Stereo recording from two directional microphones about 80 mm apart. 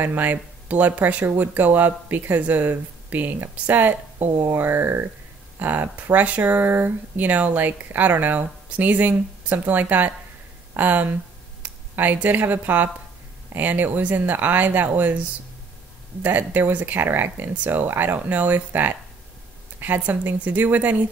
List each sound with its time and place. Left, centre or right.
0.0 s speech: right
16.2 s speech: right